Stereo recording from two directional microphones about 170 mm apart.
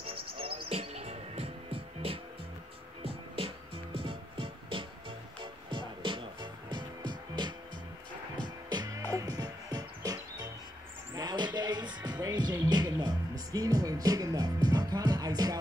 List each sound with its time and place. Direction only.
0.0 s music: 35° right (ahead or behind)
8.6 s music: 25° right (ahead or behind)
11.1 s speech: 25° right (ahead or behind)